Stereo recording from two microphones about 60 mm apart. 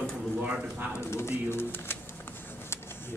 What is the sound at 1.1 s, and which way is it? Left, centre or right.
Speech, left.